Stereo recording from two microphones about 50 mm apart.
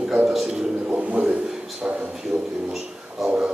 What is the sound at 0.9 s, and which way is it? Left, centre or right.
Speech, right.